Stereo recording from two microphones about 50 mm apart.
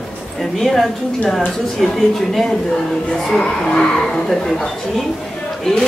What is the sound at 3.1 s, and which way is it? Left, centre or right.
Speech, centre.